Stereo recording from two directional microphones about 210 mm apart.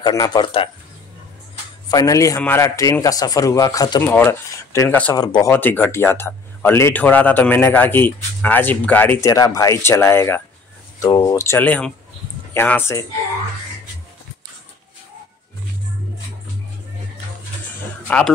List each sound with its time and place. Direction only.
0.0 s speech: 20° left (ahead or behind)
1.9 s speech: 15° left (ahead or behind)
18.0 s speech: 5° left (ahead or behind)